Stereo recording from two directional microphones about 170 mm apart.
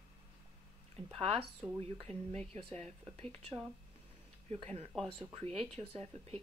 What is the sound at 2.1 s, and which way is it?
Speech, 40° right (ahead or behind).